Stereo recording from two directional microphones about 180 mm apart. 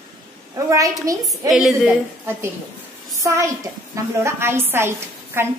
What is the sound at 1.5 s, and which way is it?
Speech, centre (ahead or behind).